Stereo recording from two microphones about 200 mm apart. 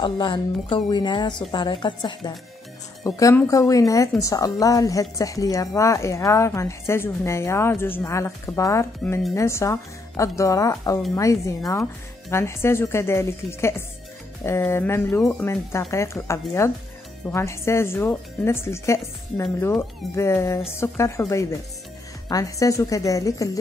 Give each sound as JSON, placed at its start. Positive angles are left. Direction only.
{"t": 0.0, "sound": "a woman's voice", "side_deg": 25}